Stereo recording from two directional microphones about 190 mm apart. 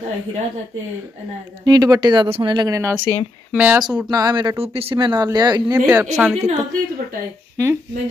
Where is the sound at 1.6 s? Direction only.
20° right (ahead or behind).